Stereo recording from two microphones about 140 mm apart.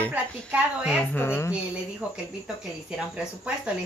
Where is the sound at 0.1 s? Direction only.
10° right (ahead or behind).